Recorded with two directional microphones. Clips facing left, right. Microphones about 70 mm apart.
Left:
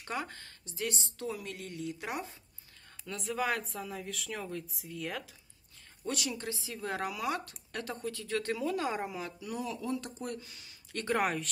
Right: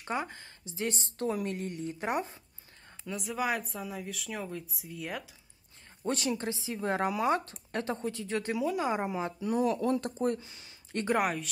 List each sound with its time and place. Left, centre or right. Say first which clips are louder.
0.0 s a woman's voice: right 3 dB; right
0.8 s speech: right 4 dB; right
3.1 s speech: right 1 dB; centre
6.0 s a woman's voice: right 5 dB; right
9.7 s speech: right 7 dB; right
11.1 s speech: even; centre